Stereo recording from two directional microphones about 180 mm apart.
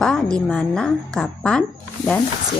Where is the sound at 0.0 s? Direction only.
5° left (ahead or behind).